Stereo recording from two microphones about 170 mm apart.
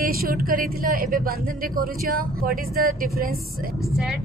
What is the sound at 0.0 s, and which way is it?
Speech, 60° right (ahead or behind).